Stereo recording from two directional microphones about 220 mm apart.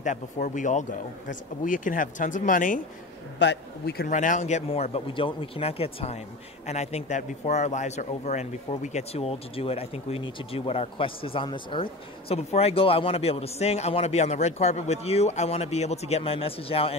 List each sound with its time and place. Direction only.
0.0 s speech: 35° left (ahead or behind)
3.3 s speech: 50° left (ahead or behind)
4.1 s speech: 35° left (ahead or behind)